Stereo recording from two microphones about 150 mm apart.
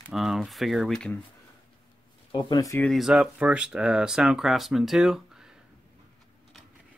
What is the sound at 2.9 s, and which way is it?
Speech, 5° right (ahead or behind).